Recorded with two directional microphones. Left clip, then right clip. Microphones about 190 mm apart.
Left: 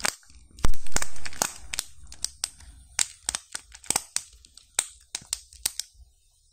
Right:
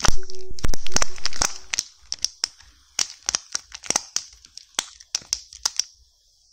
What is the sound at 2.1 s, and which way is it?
Crumpling, 25° right (ahead or behind).